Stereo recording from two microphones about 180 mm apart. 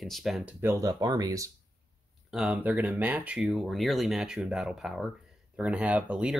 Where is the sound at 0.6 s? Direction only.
15° right (ahead or behind).